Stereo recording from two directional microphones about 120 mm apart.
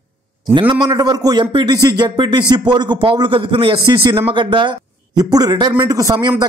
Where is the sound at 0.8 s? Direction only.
35° right (ahead or behind).